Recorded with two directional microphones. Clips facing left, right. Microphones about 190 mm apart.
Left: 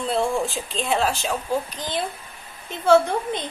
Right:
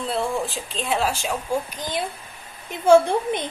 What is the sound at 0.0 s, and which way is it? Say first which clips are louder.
Speech: left 2 dB; centre (ahead or behind).